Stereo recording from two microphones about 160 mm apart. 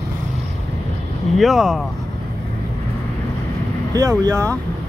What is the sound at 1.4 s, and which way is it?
Speech, centre (ahead or behind).